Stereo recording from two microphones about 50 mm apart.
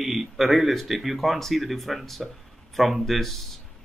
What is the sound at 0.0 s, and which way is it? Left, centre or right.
Speech, centre.